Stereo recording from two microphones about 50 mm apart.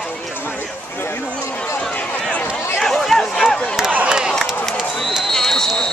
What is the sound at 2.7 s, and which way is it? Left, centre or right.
Speech, centre.